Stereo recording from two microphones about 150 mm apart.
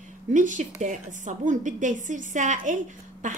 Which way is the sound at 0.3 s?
60° right (ahead or behind).